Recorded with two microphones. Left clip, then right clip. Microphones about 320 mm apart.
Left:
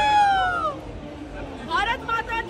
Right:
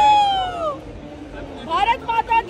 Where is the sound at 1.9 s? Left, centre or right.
Centre.